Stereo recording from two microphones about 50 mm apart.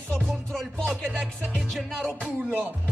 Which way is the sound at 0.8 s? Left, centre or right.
Centre.